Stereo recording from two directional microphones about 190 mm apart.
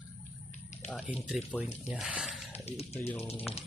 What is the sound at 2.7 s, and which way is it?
Speech, 35° left (ahead or behind).